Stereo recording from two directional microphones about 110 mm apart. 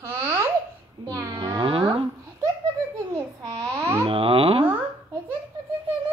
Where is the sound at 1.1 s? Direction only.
35° right (ahead or behind); by 2.1 s 50° right (ahead or behind).